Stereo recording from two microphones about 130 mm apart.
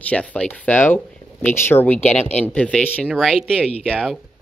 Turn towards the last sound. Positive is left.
turn(degrees=5)  # may be behind; listen again after turning